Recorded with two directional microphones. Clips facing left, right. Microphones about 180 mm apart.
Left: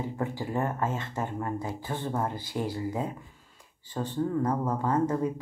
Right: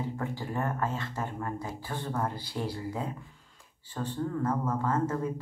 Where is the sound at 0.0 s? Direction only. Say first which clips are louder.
Left 2 dB; 15° left (ahead or behind).